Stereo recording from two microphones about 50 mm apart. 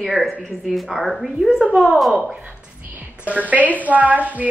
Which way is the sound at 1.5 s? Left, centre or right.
Centre.